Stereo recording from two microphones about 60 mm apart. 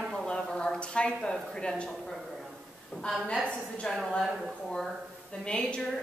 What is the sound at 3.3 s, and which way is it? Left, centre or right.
Speech, centre.